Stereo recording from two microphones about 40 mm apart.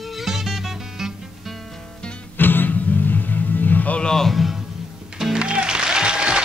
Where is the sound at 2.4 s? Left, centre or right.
Left.